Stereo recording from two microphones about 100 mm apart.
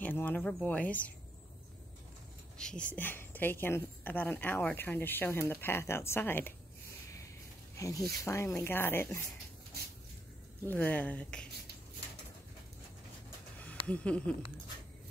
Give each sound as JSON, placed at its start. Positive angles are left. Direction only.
{"t": 0.0, "sound": "speech", "side_deg": 20}
{"t": 2.5, "sound": "a woman's voice", "side_deg": 10}
{"t": 7.7, "sound": "a woman's voice", "side_deg": 35}
{"t": 10.6, "sound": "speech", "side_deg": 20}
{"t": 13.6, "sound": "a sound", "side_deg": 15}